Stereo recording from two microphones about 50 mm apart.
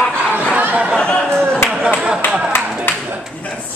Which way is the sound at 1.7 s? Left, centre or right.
Centre.